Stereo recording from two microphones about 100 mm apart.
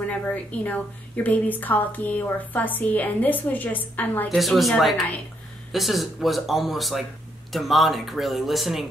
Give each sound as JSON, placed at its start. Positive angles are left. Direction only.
{"t": 0.3, "sound": "a woman's voice", "side_deg": 15}
{"t": 4.3, "sound": "speech", "side_deg": 0}